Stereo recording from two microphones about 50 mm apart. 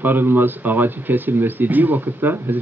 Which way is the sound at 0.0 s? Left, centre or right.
Right.